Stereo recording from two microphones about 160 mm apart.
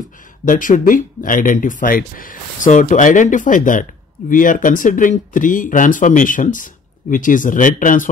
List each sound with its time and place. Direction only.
0.5 s speech: 55° left (ahead or behind)